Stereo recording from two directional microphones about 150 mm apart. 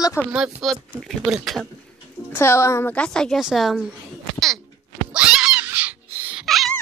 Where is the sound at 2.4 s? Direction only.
15° left (ahead or behind); by 3.9 s centre (ahead or behind).